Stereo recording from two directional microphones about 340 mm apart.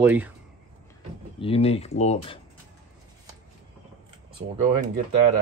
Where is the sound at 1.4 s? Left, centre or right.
Centre.